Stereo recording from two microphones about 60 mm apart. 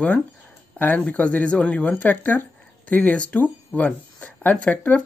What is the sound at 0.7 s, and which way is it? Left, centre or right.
Speech, left.